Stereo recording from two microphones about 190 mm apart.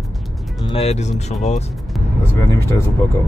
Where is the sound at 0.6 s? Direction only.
30° left (ahead or behind).